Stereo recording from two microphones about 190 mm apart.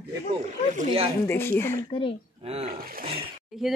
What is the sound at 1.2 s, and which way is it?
Speech, 10° left (ahead or behind).